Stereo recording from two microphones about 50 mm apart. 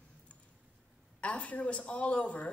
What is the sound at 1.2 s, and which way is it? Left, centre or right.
Speech, left.